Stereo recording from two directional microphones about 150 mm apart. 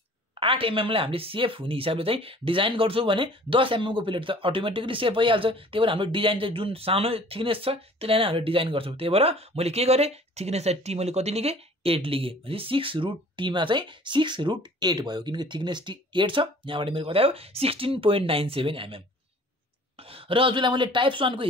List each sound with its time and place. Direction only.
0.3 s speech: 35° right (ahead or behind)